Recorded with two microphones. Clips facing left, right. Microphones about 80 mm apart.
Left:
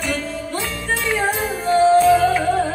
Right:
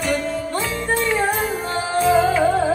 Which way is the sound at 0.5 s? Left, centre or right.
Right.